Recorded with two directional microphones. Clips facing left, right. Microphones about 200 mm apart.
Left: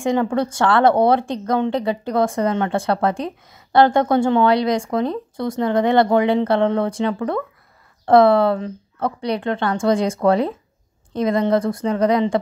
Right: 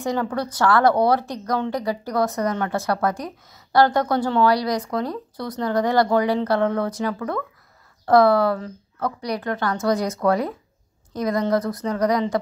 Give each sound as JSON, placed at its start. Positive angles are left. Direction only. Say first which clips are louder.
{"t": 0.0, "sound": "speech", "louder": "left 5 dB", "side_deg": 25}